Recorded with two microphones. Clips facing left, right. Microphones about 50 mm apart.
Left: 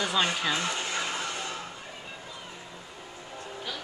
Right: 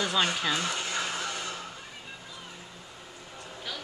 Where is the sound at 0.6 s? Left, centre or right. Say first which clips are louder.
Left 1 dB; left.